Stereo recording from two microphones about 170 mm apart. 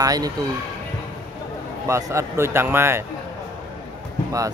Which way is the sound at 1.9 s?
15° right (ahead or behind).